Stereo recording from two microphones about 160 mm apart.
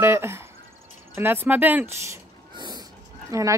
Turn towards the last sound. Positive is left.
turn(degrees=-20)  # may be behind; listen again after turning